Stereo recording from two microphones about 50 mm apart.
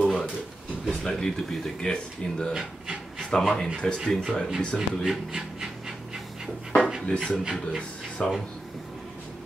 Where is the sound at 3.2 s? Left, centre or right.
Centre.